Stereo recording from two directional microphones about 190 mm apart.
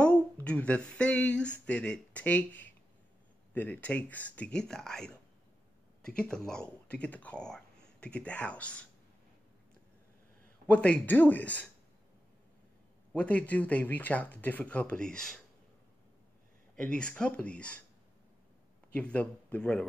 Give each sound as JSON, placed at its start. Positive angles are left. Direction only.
{"t": 0.0, "sound": "speech", "side_deg": 5}
{"t": 10.7, "sound": "speech", "side_deg": 5}
{"t": 13.1, "sound": "speech", "side_deg": 5}
{"t": 16.7, "sound": "speech", "side_deg": 5}
{"t": 18.9, "sound": "speech", "side_deg": 5}